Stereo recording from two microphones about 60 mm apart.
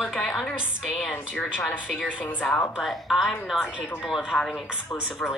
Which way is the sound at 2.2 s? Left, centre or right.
Left.